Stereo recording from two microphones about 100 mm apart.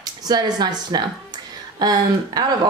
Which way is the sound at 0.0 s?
40° right (ahead or behind).